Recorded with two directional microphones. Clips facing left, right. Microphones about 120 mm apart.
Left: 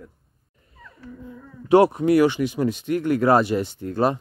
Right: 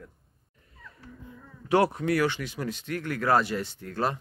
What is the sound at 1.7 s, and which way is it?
Speech, 15° left (ahead or behind).